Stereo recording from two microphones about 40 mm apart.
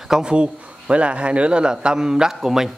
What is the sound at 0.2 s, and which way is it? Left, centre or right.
A man's voice, right.